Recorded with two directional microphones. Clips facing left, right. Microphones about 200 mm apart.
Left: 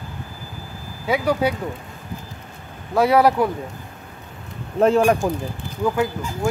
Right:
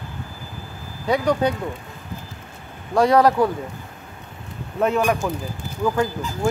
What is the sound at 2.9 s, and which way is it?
Speech, 5° left (ahead or behind).